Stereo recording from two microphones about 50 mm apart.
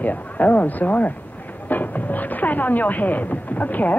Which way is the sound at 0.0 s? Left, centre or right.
Left.